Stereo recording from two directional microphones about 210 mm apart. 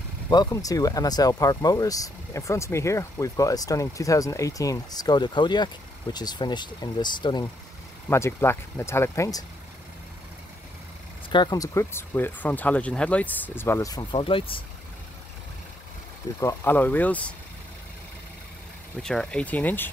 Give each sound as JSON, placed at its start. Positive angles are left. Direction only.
{"t": 0.3, "sound": "speech", "side_deg": 20}
{"t": 11.2, "sound": "speech", "side_deg": 20}
{"t": 16.3, "sound": "speech", "side_deg": 10}
{"t": 19.0, "sound": "speech", "side_deg": 5}